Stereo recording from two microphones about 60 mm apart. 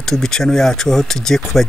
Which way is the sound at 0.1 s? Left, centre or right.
Centre.